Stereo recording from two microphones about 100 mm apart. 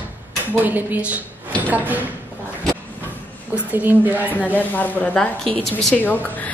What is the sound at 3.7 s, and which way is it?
Speech, 20° right (ahead or behind).